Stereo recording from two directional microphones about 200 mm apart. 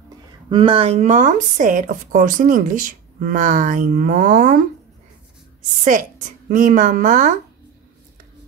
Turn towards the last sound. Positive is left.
turn(degrees=-40)  # may be behind; listen again after turning